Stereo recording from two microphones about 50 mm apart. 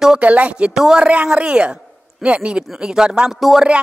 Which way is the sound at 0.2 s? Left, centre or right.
Right.